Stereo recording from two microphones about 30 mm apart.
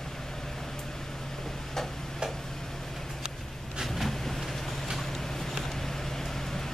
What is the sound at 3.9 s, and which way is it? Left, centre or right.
Vehicle, centre.